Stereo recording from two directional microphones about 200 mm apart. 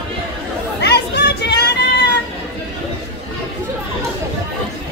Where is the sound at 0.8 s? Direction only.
55° left (ahead or behind).